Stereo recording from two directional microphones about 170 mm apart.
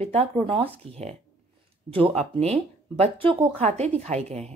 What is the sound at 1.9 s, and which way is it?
Speech, 35° right (ahead or behind).